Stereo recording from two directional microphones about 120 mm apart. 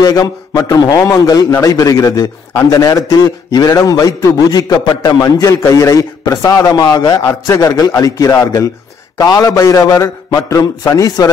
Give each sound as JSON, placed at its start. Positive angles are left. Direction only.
{"t": 0.0, "sound": "a man's voice", "side_deg": 35}